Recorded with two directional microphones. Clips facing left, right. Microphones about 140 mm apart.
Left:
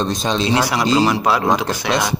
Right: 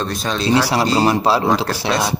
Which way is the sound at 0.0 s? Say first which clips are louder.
Left 2 dB; 20° left (ahead or behind).